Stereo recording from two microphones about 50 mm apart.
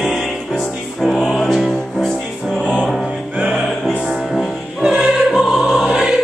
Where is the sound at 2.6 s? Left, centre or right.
Left.